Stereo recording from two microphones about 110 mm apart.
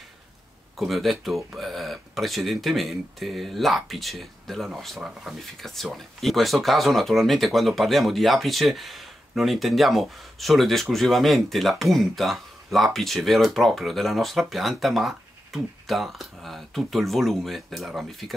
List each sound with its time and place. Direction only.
0.7 s speech: centre (ahead or behind)